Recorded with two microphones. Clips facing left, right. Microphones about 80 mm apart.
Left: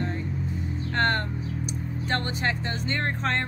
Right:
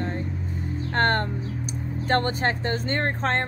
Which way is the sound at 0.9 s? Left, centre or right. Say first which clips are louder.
Right 3 dB; right.